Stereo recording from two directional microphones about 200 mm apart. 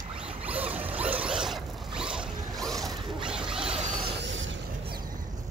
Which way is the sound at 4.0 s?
65° right (ahead or behind).